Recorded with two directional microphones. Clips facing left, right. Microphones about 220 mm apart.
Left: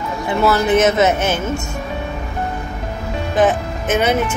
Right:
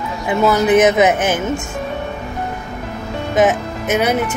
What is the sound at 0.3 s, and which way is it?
Speech, 20° right (ahead or behind).